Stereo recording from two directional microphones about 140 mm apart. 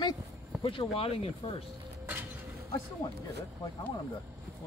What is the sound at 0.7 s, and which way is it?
Speech, 40° left (ahead or behind).